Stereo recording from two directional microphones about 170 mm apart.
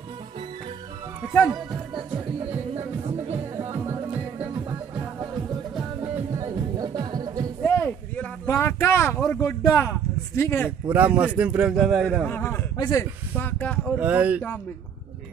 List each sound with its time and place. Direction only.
1.5 s music: 20° right (ahead or behind)
3.5 s music: 20° right (ahead or behind)
6.3 s music: 25° right (ahead or behind)
7.6 s a sound: 10° left (ahead or behind)
9.2 s speech: 10° left (ahead or behind)
11.1 s a man's voice: 5° right (ahead or behind)
12.3 s a man's voice: 10° left (ahead or behind)
13.9 s speech: 10° right (ahead or behind)